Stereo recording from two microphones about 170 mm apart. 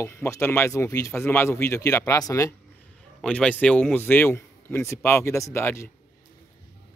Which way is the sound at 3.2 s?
5° left (ahead or behind).